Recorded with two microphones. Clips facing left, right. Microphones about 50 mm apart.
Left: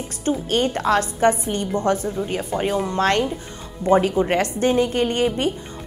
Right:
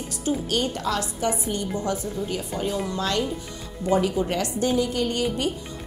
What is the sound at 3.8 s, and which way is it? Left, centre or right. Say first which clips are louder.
A woman's voice: left 5 dB; left.